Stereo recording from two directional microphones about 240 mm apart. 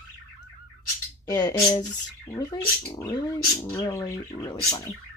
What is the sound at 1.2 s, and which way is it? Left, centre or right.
Speech, centre.